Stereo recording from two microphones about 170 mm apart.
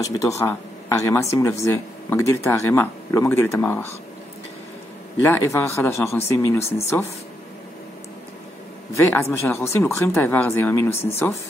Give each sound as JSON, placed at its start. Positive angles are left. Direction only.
{"t": 0.0, "sound": "speech", "side_deg": 15}
{"t": 5.2, "sound": "speech", "side_deg": 15}
{"t": 8.9, "sound": "speech", "side_deg": 15}